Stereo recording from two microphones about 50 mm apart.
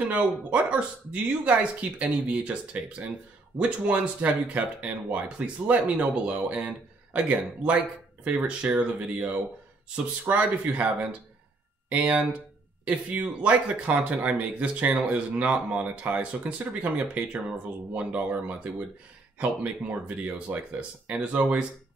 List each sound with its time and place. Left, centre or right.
0.5 s speech: right
12.8 s speech: right